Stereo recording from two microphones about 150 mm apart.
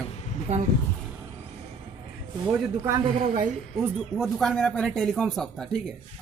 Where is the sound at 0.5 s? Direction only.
50° right (ahead or behind).